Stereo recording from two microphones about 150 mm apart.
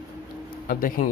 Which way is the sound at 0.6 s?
70° left (ahead or behind).